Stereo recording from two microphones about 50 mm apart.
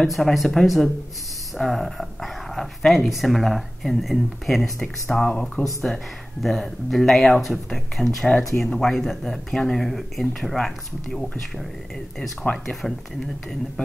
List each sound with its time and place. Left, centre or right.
0.1 s speech: centre
5.1 s speech: centre
5.6 s speech: centre
12.6 s speech: centre